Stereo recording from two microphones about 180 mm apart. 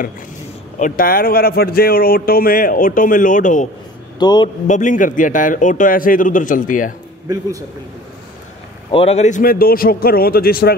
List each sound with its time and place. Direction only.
0.7 s a man's voice: 50° left (ahead or behind)
4.2 s a man's voice: 25° left (ahead or behind)
4.6 s a man's voice: 45° left (ahead or behind)
8.9 s a man's voice: 35° left (ahead or behind); by 10.8 s 60° left (ahead or behind)